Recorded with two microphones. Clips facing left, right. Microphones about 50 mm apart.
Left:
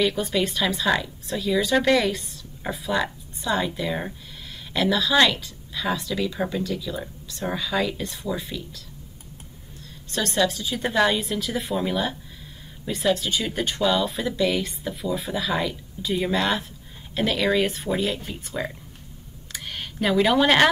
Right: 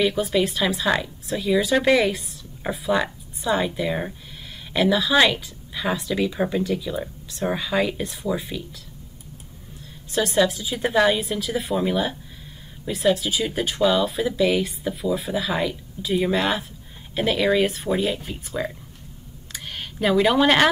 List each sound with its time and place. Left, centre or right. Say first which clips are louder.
0.0 s speech: right 2 dB; centre
10.1 s speech: right 3 dB; centre
19.5 s a sound: even; centre